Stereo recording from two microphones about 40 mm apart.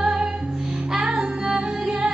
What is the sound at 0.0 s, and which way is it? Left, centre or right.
Music, centre.